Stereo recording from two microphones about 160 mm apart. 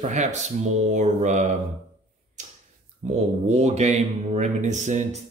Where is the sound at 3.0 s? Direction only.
45° right (ahead or behind).